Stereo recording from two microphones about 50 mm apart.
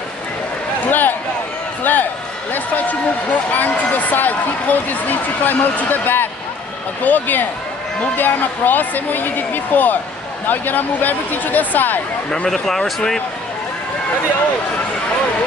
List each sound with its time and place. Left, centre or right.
0.8 s a sound: left
2.5 s speech: left
12.4 s speech: centre